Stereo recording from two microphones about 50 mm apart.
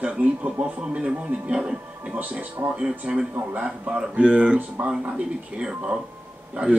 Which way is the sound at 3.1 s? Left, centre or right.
Centre.